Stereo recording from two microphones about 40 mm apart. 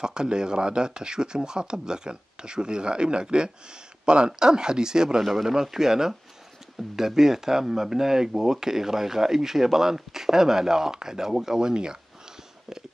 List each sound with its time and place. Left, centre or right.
0.0 s speech: centre
5.2 s speech: centre; by 12.0 s right